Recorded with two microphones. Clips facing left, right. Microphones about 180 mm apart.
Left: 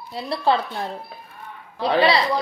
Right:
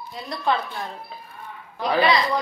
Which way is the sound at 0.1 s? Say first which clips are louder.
Left 4 dB; 30° left (ahead or behind).